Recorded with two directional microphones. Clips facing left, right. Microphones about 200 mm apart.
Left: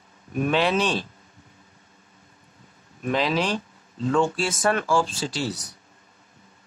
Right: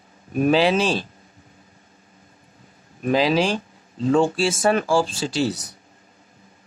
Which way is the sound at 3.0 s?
30° right (ahead or behind).